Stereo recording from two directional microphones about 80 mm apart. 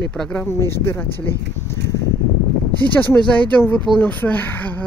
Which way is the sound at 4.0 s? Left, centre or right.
Centre.